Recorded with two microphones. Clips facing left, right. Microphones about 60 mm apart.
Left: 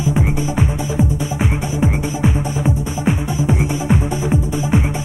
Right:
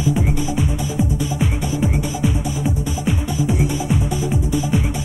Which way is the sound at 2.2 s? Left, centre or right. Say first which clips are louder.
Left 4 dB; left.